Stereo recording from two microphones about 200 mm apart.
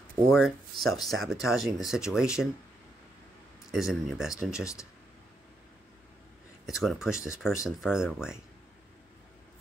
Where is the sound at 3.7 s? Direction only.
Centre (ahead or behind).